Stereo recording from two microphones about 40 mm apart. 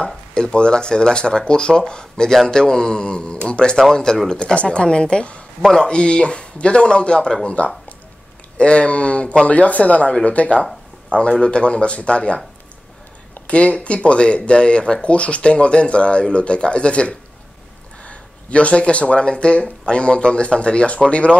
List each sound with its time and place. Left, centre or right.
0.0 s speech: centre
5.6 s speech: centre
9.5 s speech: left
13.5 s speech: left